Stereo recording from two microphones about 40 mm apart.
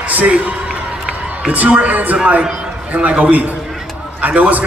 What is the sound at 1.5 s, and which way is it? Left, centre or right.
A man's voice, right.